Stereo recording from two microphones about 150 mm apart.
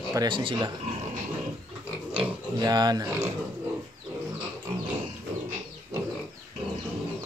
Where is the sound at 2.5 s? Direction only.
25° right (ahead or behind).